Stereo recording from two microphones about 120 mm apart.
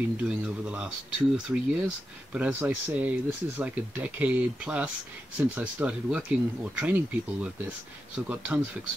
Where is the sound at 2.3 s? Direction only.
10° right (ahead or behind).